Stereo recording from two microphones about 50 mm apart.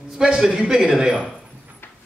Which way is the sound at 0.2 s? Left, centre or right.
Centre.